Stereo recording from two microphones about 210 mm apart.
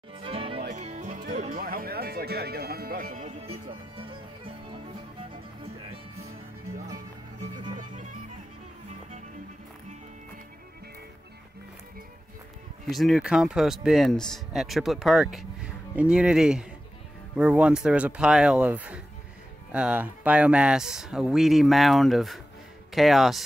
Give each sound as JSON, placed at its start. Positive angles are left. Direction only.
{"t": 0.1, "sound": "music", "side_deg": -25}
{"t": 7.7, "sound": "music", "side_deg": -35}
{"t": 12.8, "sound": "speech", "side_deg": 0}